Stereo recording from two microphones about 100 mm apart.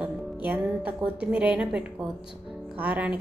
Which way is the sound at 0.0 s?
15° right (ahead or behind).